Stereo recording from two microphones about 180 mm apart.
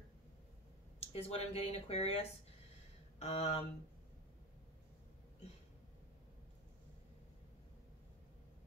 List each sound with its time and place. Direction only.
0.9 s speech: 35° left (ahead or behind)
3.2 s speech: 40° left (ahead or behind)